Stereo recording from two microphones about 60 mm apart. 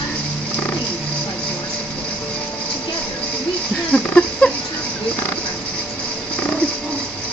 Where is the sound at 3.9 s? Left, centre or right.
Centre.